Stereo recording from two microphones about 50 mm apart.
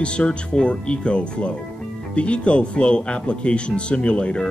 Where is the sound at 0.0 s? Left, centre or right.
Left.